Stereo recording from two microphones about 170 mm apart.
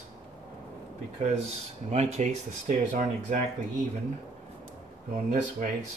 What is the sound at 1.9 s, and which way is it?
Speech, 40° right (ahead or behind).